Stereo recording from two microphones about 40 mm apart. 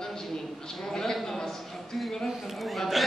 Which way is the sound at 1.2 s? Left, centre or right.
Centre.